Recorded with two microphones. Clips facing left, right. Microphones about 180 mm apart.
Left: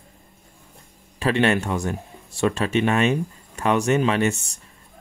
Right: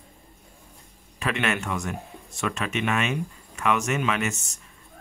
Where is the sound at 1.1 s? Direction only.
30° left (ahead or behind).